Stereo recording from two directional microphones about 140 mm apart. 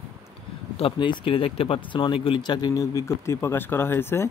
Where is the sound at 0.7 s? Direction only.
40° left (ahead or behind); by 4.3 s 15° left (ahead or behind).